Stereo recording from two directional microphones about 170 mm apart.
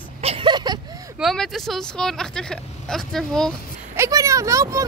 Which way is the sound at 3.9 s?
20° right (ahead or behind).